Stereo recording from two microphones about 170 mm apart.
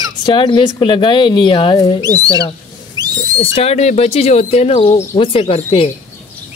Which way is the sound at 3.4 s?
35° left (ahead or behind).